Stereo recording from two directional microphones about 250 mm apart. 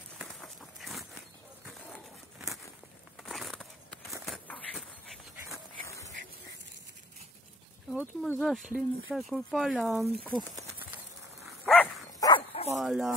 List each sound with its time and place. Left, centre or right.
0.2 s a sound: centre
5.9 s a sound: centre
8.0 s speech: centre
11.4 s dog: centre
12.3 s dog: left
12.7 s speech: centre